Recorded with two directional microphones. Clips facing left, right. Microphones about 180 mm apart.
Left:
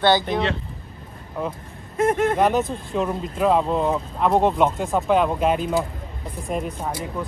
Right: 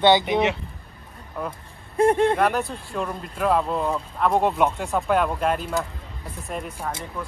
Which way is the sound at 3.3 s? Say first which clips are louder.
Left 2 dB; centre (ahead or behind).